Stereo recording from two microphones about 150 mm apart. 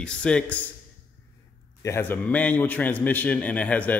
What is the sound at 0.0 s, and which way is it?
Speech, 5° left (ahead or behind).